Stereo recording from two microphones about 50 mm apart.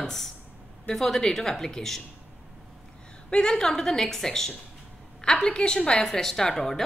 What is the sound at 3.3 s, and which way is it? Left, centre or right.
A woman's voice, centre.